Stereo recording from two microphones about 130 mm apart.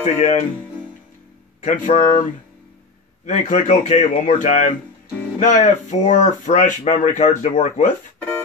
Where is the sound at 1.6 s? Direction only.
80° left.